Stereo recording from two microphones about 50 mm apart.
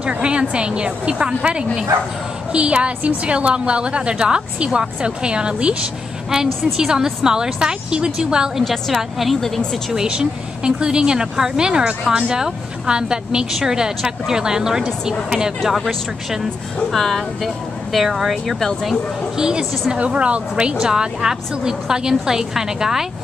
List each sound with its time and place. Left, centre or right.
0.0 s a woman's voice: right
6.8 s a woman's voice: centre
8.6 s a woman's voice: centre
9.9 s a woman's voice: centre
15.6 s a woman's voice: centre
19.3 s a woman's voice: centre